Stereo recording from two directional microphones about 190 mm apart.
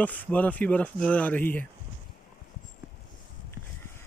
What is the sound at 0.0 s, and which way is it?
Speech, 10° left (ahead or behind).